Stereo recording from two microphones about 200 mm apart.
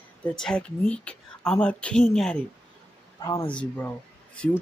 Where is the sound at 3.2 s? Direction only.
15° left (ahead or behind).